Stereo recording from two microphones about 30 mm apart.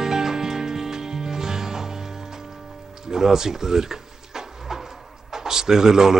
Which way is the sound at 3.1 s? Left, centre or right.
Centre.